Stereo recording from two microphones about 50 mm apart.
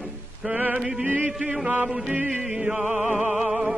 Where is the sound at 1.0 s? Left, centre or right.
Right.